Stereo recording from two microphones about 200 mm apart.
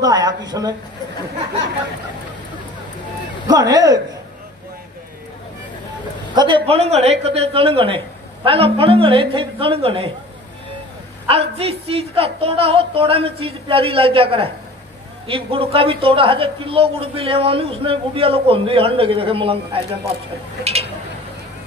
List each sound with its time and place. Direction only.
0.0 s a woman's voice: 20° right (ahead or behind)
3.4 s a woman's voice: 20° right (ahead or behind)
6.3 s a woman's voice: 25° right (ahead or behind)
11.2 s a woman's voice: 30° right (ahead or behind)